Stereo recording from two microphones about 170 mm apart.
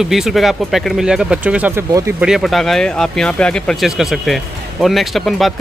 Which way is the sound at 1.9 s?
20° right (ahead or behind).